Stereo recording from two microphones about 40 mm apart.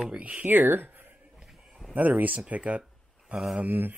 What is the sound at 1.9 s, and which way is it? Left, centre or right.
Speech, right.